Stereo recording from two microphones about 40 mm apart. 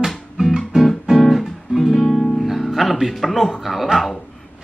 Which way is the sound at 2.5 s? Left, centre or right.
Centre.